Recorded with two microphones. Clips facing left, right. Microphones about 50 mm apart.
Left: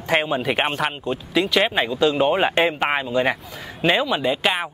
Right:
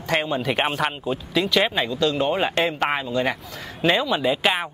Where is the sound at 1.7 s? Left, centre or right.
Centre.